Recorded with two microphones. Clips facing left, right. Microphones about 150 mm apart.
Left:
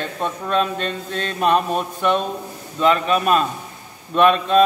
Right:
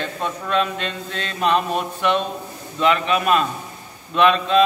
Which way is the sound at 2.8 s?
40° left (ahead or behind).